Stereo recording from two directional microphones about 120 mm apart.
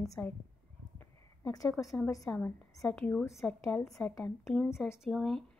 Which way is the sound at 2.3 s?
15° left (ahead or behind).